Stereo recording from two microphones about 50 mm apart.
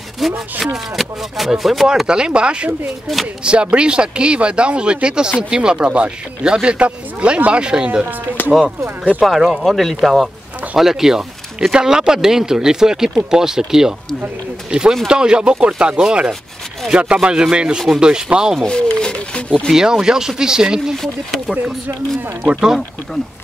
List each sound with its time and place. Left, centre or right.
0.2 s speech: centre
2.0 s speech: centre
3.7 s speech: centre
9.2 s speech: centre
18.7 s speech: centre
19.7 s speech: centre
22.5 s speech: centre